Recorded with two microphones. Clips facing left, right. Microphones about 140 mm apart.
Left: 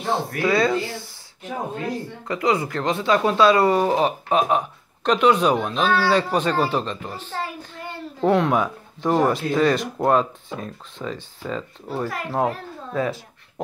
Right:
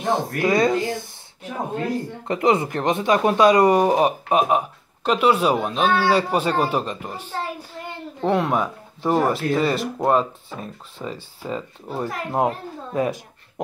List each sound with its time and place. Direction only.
0.0 s speech: 20° right (ahead or behind)
0.7 s speech: 45° right (ahead or behind)
2.2 s speech: 25° right (ahead or behind)